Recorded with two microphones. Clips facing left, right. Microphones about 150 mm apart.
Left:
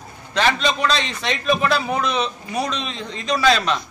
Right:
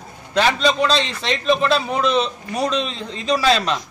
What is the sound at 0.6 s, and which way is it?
Speech, 35° right (ahead or behind).